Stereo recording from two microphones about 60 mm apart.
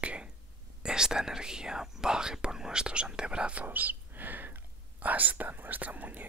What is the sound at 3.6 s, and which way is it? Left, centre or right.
Speech, right.